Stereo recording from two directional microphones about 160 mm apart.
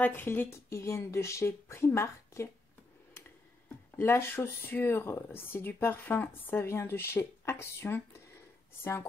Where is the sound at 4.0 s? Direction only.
15° left (ahead or behind).